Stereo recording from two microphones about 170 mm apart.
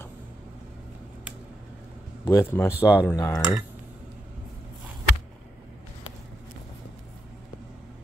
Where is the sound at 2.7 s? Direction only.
5° right (ahead or behind).